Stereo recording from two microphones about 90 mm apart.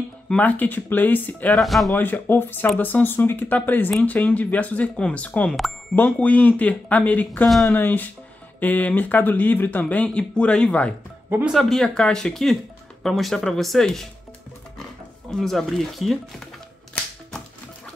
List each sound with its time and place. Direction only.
0.3 s speech: 15° left (ahead or behind)
1.5 s speech: centre (ahead or behind)
2.0 s speech: 20° left (ahead or behind)
7.4 s speech: centre (ahead or behind)
7.7 s speech: 20° left (ahead or behind); by 14.0 s 5° left (ahead or behind)
15.3 s speech: 5° left (ahead or behind)